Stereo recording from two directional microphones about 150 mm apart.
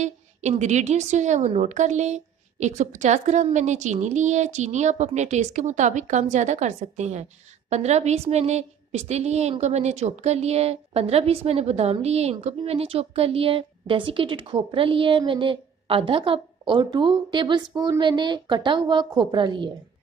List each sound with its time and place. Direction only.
0.0 s a woman's voice: 50° right (ahead or behind); by 19.7 s 30° right (ahead or behind)